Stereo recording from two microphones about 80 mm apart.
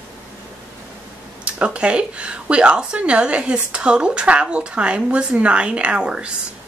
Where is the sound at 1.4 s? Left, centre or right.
Centre.